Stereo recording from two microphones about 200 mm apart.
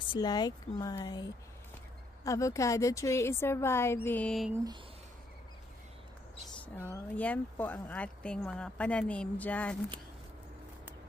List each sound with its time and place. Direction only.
0.1 s speech: 20° left (ahead or behind); by 4.6 s centre (ahead or behind)
6.6 s speech: 10° left (ahead or behind)